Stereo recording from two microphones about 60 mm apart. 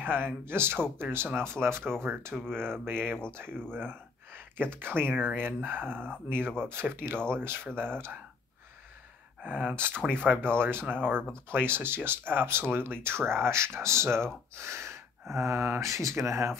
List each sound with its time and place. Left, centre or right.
0.0 s speech: right
2.3 s speech: centre
2.8 s speech: right
3.6 s speech: centre
3.9 s speech: right
9.5 s speech: right
9.8 s speech: right
15.8 s speech: right